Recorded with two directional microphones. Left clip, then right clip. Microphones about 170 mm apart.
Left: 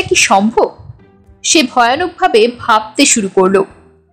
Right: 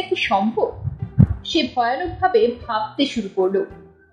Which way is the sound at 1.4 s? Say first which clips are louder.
Left 11 dB; 50° left (ahead or behind).